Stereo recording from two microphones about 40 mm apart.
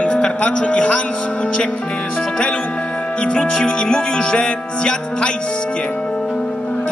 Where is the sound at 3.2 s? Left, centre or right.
Left.